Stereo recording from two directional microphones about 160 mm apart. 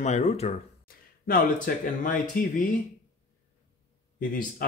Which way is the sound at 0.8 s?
65° left (ahead or behind).